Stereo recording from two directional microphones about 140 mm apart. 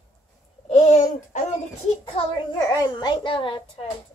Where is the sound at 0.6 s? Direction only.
55° left (ahead or behind).